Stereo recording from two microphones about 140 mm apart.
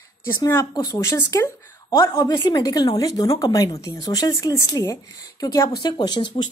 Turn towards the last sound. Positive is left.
turn(degrees=35)  # may be behind; listen again after turning